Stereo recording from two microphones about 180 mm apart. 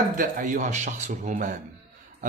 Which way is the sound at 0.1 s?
45° right (ahead or behind).